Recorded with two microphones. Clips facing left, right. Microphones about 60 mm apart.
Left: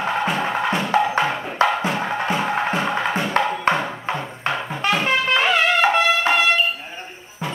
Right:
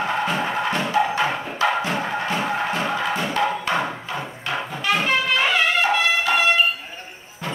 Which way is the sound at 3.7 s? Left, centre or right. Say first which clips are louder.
Left 3 dB; left.